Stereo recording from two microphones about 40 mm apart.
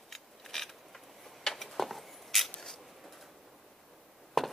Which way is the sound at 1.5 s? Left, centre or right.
Centre.